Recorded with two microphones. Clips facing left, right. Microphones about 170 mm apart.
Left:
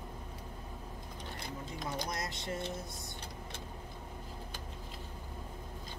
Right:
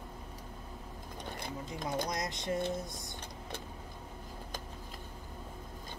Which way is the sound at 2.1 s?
20° right (ahead or behind).